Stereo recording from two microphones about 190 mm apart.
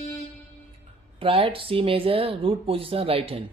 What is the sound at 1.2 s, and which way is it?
Speech, 30° right (ahead or behind).